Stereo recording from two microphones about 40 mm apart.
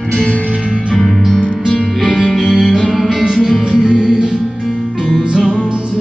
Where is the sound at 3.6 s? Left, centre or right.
Centre.